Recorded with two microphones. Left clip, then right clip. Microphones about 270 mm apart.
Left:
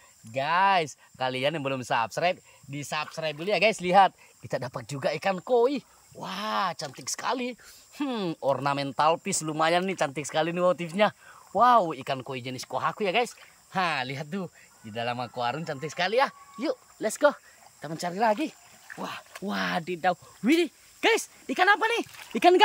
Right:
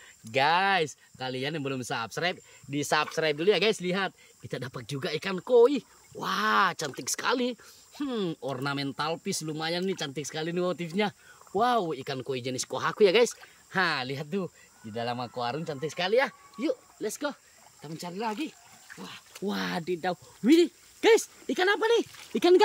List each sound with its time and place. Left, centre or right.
0.3 s speech: centre
19.3 s speech: centre